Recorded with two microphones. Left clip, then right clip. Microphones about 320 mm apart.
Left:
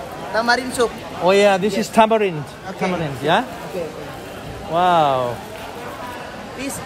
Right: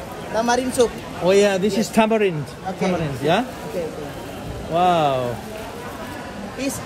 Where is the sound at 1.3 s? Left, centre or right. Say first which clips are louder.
Left 2 dB; centre.